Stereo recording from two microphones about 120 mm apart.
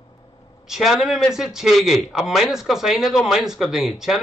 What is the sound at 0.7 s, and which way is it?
Speech, centre (ahead or behind).